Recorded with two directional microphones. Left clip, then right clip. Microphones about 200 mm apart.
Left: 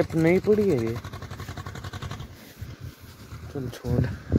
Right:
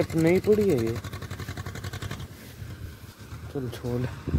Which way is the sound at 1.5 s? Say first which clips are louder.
Even; 60° right (ahead or behind).